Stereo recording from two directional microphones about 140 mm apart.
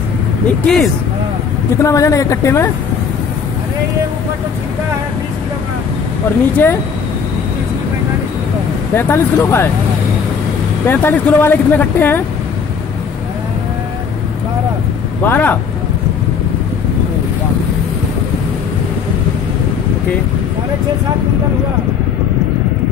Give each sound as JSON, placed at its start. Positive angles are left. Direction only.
{"t": 0.5, "sound": "speech", "side_deg": 5}
{"t": 1.8, "sound": "speech", "side_deg": 25}
{"t": 6.5, "sound": "speech", "side_deg": 15}
{"t": 8.9, "sound": "speech", "side_deg": 15}
{"t": 10.9, "sound": "speech", "side_deg": 15}
{"t": 15.2, "sound": "speech", "side_deg": 15}